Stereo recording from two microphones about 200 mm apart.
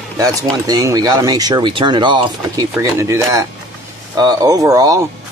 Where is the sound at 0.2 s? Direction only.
20° right (ahead or behind).